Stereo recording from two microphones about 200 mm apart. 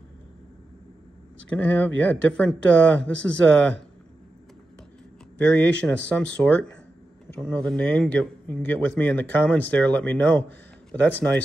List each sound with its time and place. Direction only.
1.5 s a man's voice: 10° left (ahead or behind)
5.5 s a man's voice: 5° left (ahead or behind)